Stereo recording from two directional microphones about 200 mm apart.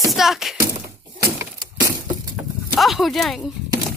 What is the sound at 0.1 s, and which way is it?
Speech, centre (ahead or behind).